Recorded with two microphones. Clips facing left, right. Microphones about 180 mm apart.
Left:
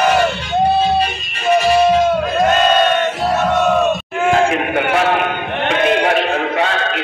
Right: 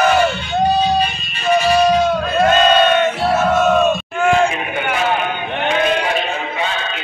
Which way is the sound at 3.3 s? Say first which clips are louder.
Even; centre (ahead or behind).